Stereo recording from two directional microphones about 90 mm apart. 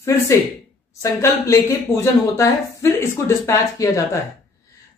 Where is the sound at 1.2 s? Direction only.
35° left (ahead or behind).